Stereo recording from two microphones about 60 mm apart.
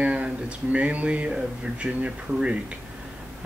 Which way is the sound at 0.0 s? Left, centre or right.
Centre.